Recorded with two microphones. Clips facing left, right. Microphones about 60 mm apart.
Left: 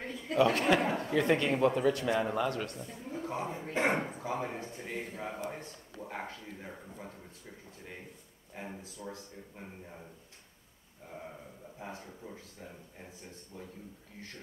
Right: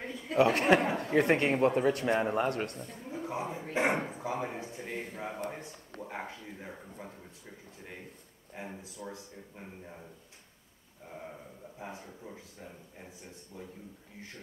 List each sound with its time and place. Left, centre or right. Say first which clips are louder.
0.0 s chuckle: even; centre
0.4 s speech: right 2 dB; right
3.0 s speech: even; centre
4.8 s speech: even; centre
6.2 s speech: even; centre
6.6 s speech: right 1 dB; centre
8.5 s speech: right 1 dB; centre
8.9 s speech: right 1 dB; centre
9.6 s speech: right 1 dB; centre
11.1 s speech: right 1 dB; centre
13.5 s a man's voice: right 1 dB; centre